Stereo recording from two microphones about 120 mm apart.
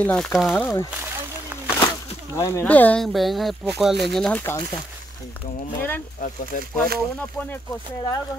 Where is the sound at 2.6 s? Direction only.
10° left (ahead or behind).